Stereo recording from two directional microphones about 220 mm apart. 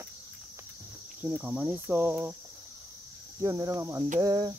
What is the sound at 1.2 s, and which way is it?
Cricket, 5° right (ahead or behind).